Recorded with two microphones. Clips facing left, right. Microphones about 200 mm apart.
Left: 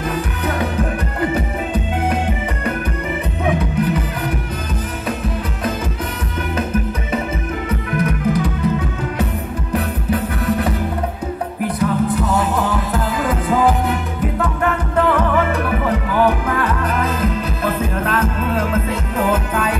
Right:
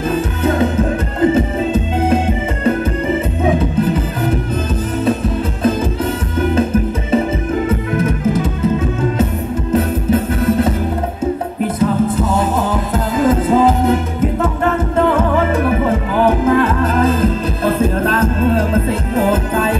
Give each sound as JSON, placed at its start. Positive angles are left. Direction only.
{"t": 0.1, "sound": "music", "side_deg": -25}
{"t": 3.4, "sound": "music", "side_deg": -25}
{"t": 6.5, "sound": "music", "side_deg": -30}